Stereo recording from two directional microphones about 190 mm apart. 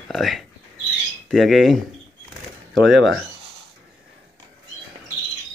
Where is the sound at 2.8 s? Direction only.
Centre (ahead or behind).